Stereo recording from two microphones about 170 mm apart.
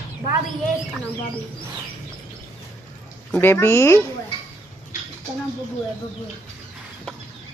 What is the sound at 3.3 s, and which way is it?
Speech, 10° left (ahead or behind).